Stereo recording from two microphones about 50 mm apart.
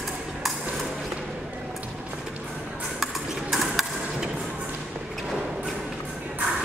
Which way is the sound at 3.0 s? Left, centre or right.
Centre.